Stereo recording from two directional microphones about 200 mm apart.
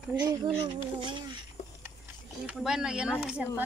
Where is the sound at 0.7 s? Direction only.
25° right (ahead or behind).